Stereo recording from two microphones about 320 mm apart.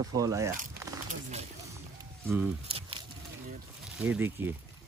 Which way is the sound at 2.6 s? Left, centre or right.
Centre.